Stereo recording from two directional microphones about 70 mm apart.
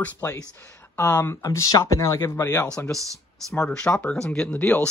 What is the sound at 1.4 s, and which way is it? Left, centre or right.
Speech, left.